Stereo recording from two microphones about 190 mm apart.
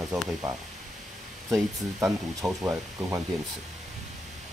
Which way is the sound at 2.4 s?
15° right (ahead or behind).